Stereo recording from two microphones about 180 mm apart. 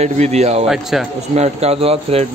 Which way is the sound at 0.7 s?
Centre (ahead or behind).